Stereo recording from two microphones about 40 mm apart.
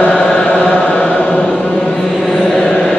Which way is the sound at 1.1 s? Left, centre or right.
Left.